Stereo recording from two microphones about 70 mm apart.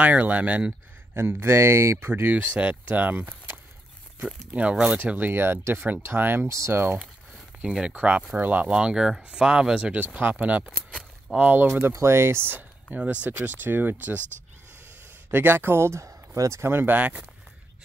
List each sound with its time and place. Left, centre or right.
0.0 s speech: right
1.1 s speech: right
2.3 s speech: centre
4.6 s speech: centre
6.5 s speech: right
7.6 s speech: centre
7.9 s speech: right
11.6 s speech: right
12.9 s speech: right
15.3 s speech: right
16.9 s speech: right